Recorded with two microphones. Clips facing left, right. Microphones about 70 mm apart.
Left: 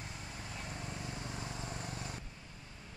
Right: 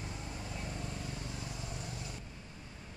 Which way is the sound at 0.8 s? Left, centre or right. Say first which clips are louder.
Right 1 dB; left.